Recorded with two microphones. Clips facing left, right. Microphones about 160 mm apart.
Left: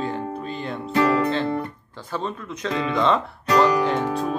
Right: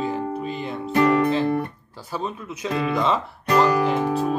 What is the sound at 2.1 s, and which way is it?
Speech, 10° right (ahead or behind).